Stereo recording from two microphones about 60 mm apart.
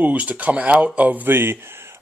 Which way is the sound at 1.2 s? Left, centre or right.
Right.